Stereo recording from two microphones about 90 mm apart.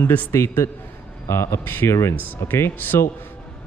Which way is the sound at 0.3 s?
30° left (ahead or behind).